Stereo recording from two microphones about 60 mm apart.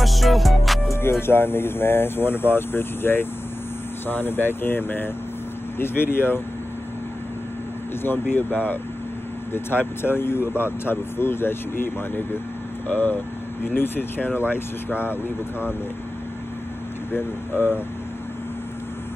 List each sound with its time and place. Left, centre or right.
0.0 s music: centre
1.2 s speech: left
8.0 s speech: left
17.1 s speech: left